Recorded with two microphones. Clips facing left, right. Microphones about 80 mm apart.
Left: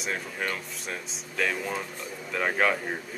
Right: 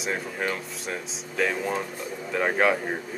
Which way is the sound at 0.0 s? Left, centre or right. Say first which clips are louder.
Right 3 dB; centre.